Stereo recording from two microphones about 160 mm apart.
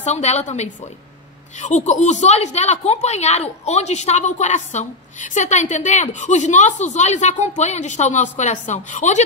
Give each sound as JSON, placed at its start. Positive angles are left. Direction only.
{"t": 0.0, "sound": "a woman's voice", "side_deg": 40}